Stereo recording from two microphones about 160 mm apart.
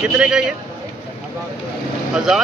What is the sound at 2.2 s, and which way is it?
Speech, centre (ahead or behind).